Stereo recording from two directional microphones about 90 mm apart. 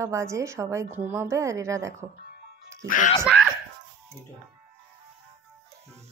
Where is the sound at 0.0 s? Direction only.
35° right (ahead or behind).